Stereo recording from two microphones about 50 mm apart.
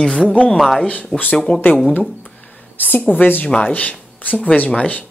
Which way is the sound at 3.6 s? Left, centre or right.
Left.